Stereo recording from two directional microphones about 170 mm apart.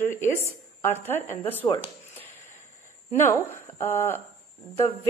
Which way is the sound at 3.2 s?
15° left (ahead or behind).